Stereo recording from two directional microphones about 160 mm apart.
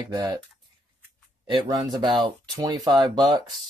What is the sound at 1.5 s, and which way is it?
Speech, 25° right (ahead or behind).